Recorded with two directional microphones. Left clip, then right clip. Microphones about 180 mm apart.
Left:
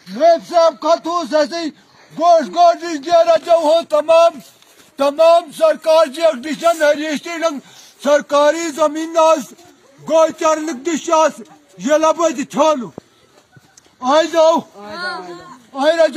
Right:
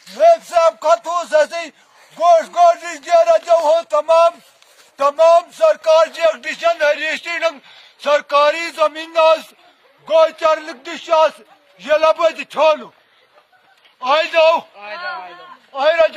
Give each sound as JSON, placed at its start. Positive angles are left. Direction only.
{"t": 0.7, "sound": "a man's voice", "side_deg": -20}
{"t": 3.3, "sound": "a man's voice", "side_deg": 15}
{"t": 14.0, "sound": "a man's voice", "side_deg": 45}
{"t": 15.7, "sound": "a man's voice", "side_deg": 0}